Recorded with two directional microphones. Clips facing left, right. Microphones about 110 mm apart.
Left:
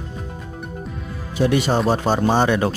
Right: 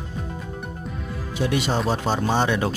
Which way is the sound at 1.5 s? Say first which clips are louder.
Left 4 dB; 45° left (ahead or behind).